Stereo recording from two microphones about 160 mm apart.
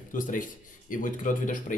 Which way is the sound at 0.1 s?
55° left (ahead or behind).